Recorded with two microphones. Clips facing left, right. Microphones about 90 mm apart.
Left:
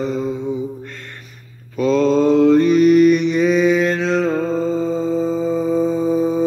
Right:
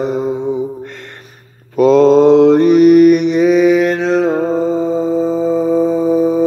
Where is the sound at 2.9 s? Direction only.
65° right (ahead or behind).